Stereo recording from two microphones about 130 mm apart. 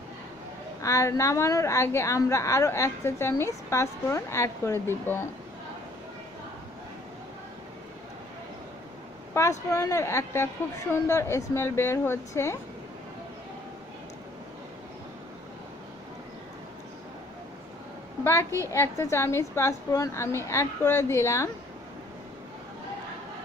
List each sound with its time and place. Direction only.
0.8 s a woman's voice: 25° left (ahead or behind)
9.3 s a woman's voice: 20° left (ahead or behind)
18.2 s a woman's voice: 20° left (ahead or behind)